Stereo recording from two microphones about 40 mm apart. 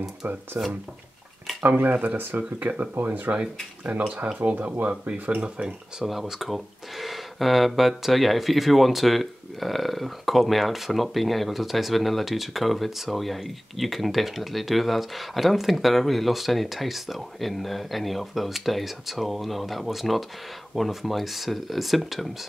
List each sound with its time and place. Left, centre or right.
0.5 s speech: right
1.6 s speech: right
5.4 s speech: right
6.0 s speech: centre